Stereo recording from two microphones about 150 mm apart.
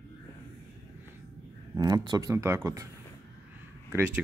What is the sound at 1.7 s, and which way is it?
Speech, 25° right (ahead or behind).